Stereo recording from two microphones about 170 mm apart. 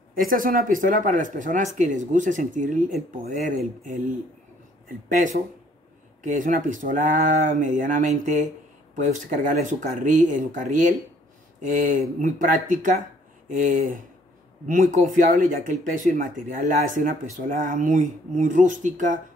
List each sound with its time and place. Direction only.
0.1 s speech: 55° right (ahead or behind)